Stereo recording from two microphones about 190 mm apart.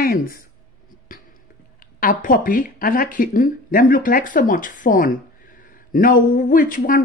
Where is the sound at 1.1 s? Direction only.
45° left (ahead or behind).